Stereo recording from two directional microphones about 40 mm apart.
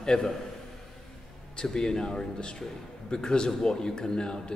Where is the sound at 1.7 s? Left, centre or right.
Centre.